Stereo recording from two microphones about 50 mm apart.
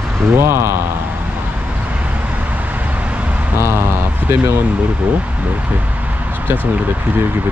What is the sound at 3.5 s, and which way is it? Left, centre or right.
Speech, right.